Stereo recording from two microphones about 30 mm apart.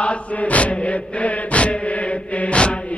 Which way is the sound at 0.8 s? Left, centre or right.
Left.